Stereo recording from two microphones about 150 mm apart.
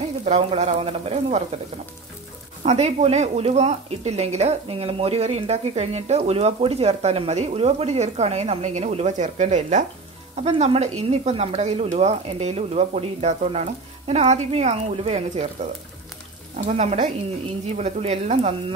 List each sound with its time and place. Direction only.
0.2 s speech: 45° right (ahead or behind)
2.6 s speech: 45° right (ahead or behind)
16.6 s speech: 50° right (ahead or behind)